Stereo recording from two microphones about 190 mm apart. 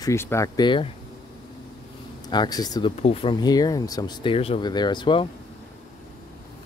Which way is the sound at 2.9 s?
35° left (ahead or behind).